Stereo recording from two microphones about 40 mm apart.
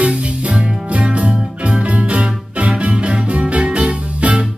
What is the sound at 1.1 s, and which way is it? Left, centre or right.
Music, right.